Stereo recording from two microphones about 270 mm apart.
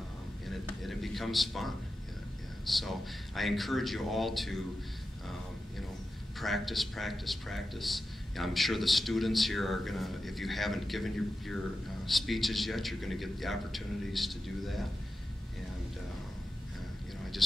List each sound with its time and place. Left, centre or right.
0.5 s a sound: centre
2.6 s a man's voice: centre
6.4 s a man's voice: centre